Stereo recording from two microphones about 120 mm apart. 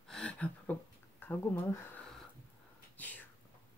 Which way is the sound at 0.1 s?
10° left (ahead or behind).